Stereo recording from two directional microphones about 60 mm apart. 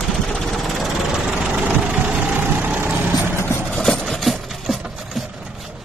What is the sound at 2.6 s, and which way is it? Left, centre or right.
Vehicle, right.